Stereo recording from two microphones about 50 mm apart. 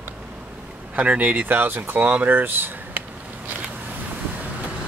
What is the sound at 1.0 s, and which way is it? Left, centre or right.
Speech, right.